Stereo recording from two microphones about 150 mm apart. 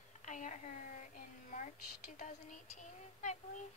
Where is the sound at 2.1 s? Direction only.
55° left (ahead or behind).